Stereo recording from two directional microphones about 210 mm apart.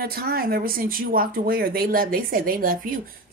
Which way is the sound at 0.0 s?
45° right (ahead or behind).